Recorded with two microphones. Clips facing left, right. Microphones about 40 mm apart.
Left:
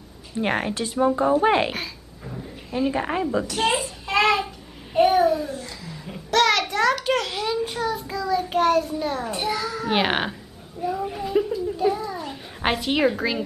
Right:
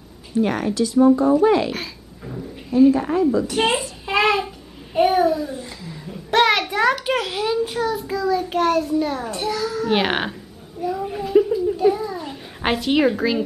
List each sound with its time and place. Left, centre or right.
0.4 s speech: left
1.7 s a sound: centre
2.9 s speech: left
3.4 s speech: right
4.0 s a sound: centre
4.9 s babbling: centre
6.3 s a sound: centre
6.7 s a child's voice: centre
9.3 s a child's voice: centre
9.8 s a child's voice: centre
10.8 s babbling: centre